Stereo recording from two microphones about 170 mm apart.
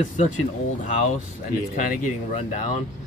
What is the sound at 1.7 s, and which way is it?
Speech, 50° left (ahead or behind).